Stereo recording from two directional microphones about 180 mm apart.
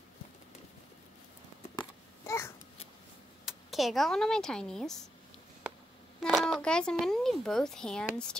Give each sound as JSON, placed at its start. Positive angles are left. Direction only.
{"t": 1.8, "sound": "babbling", "side_deg": 15}
{"t": 3.4, "sound": "speech", "side_deg": 0}
{"t": 6.2, "sound": "speech", "side_deg": 0}